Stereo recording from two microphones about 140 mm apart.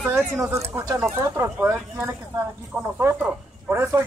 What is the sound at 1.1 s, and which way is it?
A man's voice, 20° right (ahead or behind).